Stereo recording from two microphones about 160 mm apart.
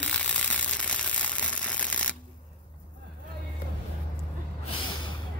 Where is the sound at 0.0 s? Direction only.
5° left (ahead or behind).